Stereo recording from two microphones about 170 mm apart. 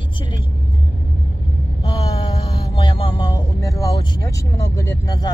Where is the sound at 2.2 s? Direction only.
30° left (ahead or behind).